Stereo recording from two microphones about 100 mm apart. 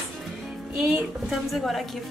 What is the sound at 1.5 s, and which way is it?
Speech, centre (ahead or behind).